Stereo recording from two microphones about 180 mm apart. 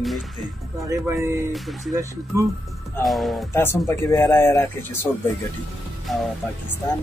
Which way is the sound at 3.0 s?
Centre (ahead or behind).